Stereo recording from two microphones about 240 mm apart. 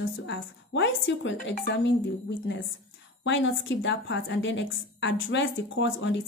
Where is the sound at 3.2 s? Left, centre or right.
Left.